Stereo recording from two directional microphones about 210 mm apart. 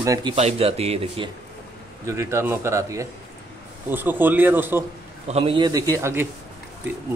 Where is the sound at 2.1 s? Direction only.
15° right (ahead or behind).